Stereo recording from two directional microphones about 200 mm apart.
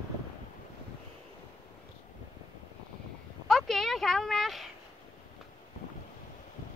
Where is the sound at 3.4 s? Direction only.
Centre (ahead or behind).